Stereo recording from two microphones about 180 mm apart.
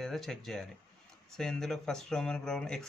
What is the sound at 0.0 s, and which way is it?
Speech, centre (ahead or behind).